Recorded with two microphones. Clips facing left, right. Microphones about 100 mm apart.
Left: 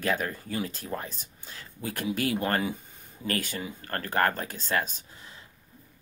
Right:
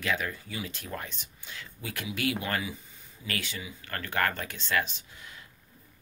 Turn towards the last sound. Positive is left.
turn(degrees=35)  # may be behind; listen again after turning